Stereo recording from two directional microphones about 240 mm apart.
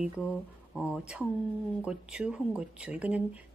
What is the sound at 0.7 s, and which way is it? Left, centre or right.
A woman's voice, centre.